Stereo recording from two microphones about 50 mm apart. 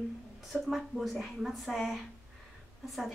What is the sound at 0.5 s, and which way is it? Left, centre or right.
A woman's voice, centre.